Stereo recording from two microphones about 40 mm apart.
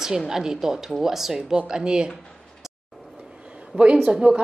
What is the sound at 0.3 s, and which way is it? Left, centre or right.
A woman's voice, centre.